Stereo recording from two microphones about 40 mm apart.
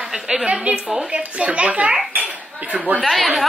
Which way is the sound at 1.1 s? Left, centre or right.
Right.